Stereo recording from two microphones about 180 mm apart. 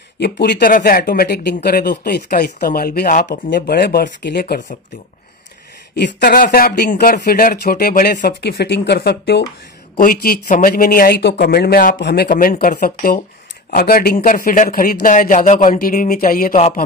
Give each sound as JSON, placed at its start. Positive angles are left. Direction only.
{"t": 0.2, "sound": "speech", "side_deg": 65}
{"t": 3.3, "sound": "speech", "side_deg": 75}
{"t": 5.9, "sound": "speech", "side_deg": 80}
{"t": 6.2, "sound": "speech", "side_deg": 50}
{"t": 9.9, "sound": "speech", "side_deg": 55}